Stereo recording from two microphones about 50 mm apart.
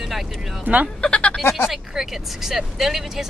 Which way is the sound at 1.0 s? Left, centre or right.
Left.